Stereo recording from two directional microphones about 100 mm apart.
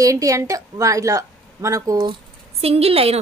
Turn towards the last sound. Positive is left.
turn(degrees=-75)  # may be behind; listen again after turning